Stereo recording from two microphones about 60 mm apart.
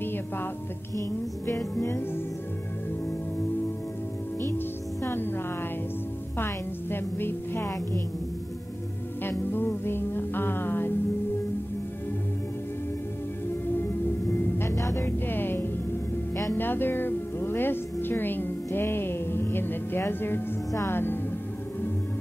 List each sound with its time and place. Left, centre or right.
0.0 s music: left
1.8 s music: left
4.5 s music: left
6.3 s a woman's voice: left
9.2 s music: left
13.7 s music: left
14.8 s music: left
15.0 s music: left